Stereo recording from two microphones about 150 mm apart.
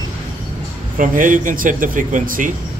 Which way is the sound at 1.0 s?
65° right (ahead or behind).